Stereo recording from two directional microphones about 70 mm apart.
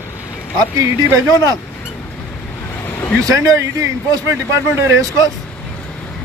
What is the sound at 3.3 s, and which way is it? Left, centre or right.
Speech, right.